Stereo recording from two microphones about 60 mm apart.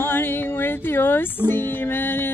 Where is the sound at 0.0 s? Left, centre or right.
Left.